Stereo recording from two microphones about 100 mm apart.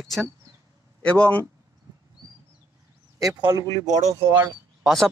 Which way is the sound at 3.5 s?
45° right (ahead or behind).